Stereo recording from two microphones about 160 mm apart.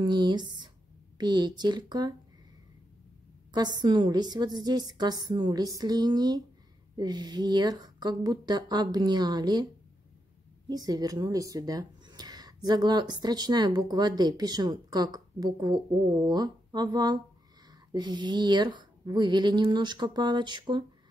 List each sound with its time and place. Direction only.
0.0 s speech: 25° right (ahead or behind)
3.5 s speech: 25° right (ahead or behind)
10.7 s speech: 25° right (ahead or behind)